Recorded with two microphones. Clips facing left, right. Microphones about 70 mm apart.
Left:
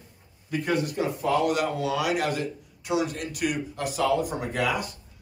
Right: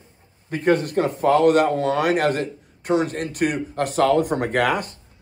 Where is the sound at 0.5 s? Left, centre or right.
Right.